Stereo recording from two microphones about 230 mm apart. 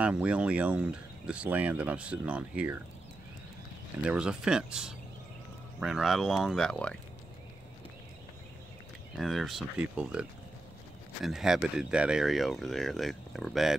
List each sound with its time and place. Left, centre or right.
0.0 s speech: centre
4.0 s speech: centre
9.1 s speech: centre
11.2 s speech: centre